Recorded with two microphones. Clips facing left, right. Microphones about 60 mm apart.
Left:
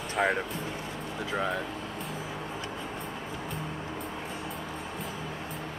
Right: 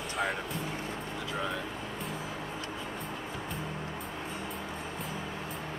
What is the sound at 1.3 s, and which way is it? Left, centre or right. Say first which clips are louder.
Speech: left 5 dB; centre.